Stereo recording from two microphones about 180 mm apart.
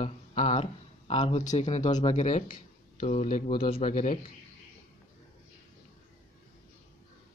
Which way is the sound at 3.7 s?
40° left (ahead or behind).